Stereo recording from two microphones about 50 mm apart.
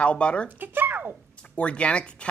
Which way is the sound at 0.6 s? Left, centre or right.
Right.